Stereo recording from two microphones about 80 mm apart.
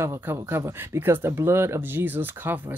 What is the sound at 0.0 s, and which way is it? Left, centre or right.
Speech, right.